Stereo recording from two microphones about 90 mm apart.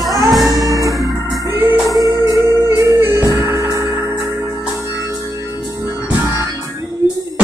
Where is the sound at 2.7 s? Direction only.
35° right (ahead or behind).